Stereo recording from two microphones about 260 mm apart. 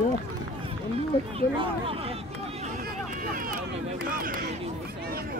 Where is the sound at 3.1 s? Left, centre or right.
Right.